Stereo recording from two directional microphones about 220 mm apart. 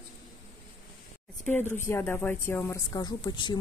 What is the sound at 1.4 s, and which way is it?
Speech, 10° left (ahead or behind).